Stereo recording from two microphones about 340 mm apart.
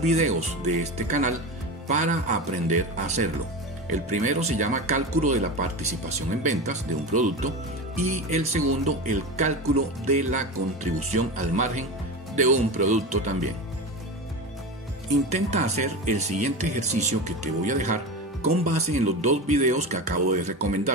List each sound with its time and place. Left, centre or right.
0.0 s speech: centre
15.2 s speech: centre